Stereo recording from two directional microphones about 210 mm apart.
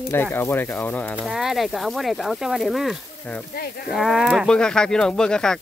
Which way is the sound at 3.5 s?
45° left (ahead or behind).